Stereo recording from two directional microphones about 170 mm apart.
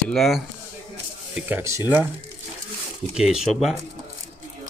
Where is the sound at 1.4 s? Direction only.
10° right (ahead or behind).